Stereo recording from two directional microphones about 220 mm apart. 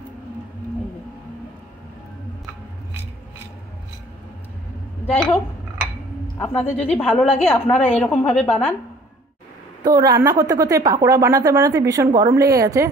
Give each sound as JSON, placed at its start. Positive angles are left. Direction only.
{"t": 5.0, "sound": "a woman's voice", "side_deg": 30}
{"t": 6.4, "sound": "a woman's voice", "side_deg": 5}
{"t": 9.8, "sound": "speech", "side_deg": -15}